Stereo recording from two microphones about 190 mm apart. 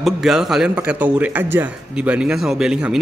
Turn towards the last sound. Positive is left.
turn(degrees=-5)  # may be behind; listen again after turning